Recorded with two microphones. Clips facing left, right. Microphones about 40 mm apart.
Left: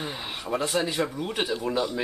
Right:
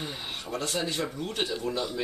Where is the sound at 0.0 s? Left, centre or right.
Centre.